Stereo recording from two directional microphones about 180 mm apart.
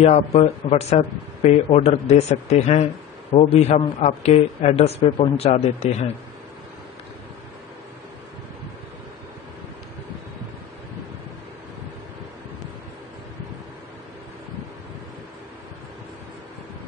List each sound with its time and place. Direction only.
0.0 s speech: 35° left (ahead or behind)